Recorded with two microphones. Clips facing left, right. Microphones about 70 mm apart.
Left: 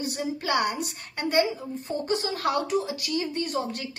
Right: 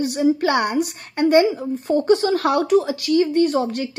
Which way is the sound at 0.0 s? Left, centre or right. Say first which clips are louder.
Right 12 dB; right.